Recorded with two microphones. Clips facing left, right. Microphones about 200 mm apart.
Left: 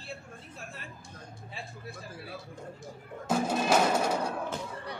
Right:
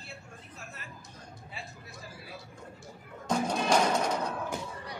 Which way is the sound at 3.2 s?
5° left (ahead or behind).